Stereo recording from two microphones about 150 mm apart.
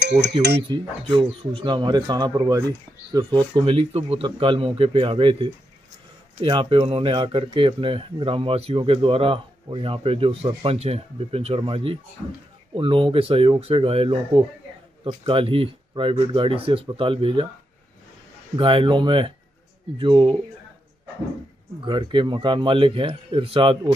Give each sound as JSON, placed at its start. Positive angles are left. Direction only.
{"t": 0.7, "sound": "speech", "side_deg": -35}
{"t": 18.6, "sound": "speech", "side_deg": -35}
{"t": 21.8, "sound": "speech", "side_deg": -35}